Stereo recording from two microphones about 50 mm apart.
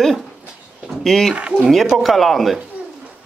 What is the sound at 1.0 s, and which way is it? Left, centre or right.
Speech, centre.